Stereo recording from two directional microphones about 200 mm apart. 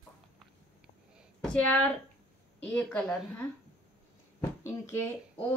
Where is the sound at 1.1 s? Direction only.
5° left (ahead or behind).